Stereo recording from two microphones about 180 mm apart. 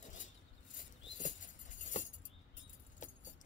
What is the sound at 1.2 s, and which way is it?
Music, 45° left (ahead or behind).